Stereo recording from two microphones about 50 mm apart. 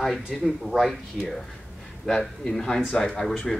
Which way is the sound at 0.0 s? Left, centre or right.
Centre.